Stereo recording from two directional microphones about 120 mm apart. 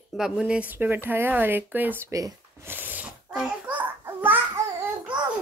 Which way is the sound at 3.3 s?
10° right (ahead or behind).